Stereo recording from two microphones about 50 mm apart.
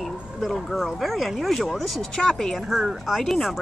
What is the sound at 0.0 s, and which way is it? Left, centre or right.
Speech, centre.